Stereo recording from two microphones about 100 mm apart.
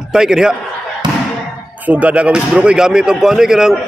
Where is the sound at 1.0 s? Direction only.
50° right (ahead or behind).